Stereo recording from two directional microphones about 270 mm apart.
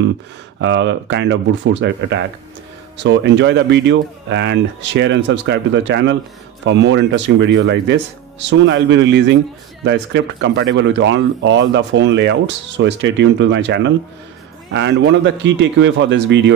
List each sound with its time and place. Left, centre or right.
0.6 s speech: right